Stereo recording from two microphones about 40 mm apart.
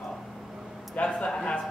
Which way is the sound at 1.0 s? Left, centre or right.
Left.